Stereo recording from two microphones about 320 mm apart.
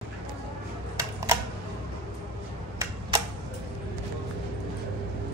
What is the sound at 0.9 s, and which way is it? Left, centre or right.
Typewriter, centre.